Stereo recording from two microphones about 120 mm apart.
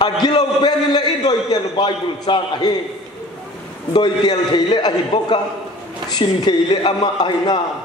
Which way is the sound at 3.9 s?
35° left (ahead or behind).